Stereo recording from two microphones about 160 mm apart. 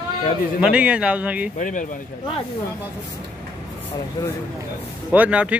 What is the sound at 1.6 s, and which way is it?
Speech, 55° left (ahead or behind).